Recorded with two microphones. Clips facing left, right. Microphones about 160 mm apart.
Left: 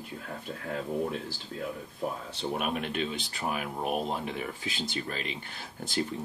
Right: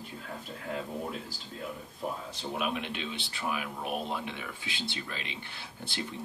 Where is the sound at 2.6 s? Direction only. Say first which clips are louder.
Left 1 dB; 45° left (ahead or behind).